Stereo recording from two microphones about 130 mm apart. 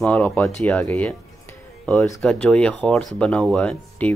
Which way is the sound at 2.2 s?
10° left (ahead or behind).